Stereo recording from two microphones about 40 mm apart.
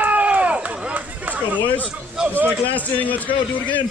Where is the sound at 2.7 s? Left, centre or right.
Left.